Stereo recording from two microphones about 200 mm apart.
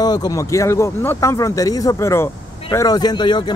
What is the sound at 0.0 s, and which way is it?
A man's voice, 20° left (ahead or behind).